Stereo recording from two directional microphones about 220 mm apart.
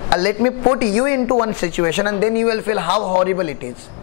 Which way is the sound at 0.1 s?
20° left (ahead or behind).